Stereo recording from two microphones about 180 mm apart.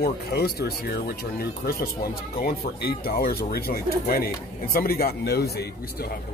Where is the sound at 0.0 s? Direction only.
60° left (ahead or behind).